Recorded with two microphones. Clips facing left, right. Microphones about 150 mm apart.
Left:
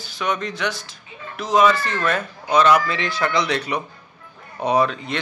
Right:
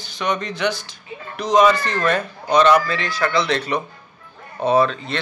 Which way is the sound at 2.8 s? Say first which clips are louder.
Right 1 dB; 20° left (ahead or behind).